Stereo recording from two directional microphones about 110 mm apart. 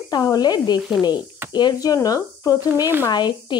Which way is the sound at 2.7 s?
20° right (ahead or behind).